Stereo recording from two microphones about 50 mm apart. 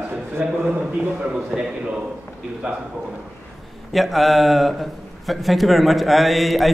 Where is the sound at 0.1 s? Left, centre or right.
Right.